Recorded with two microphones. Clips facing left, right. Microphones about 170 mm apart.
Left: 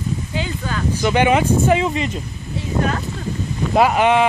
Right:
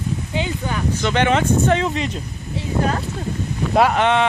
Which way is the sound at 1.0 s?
10° left (ahead or behind).